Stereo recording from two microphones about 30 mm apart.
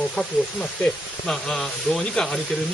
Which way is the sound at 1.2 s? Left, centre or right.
Centre.